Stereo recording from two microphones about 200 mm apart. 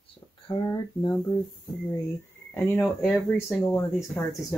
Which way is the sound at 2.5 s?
10° left (ahead or behind).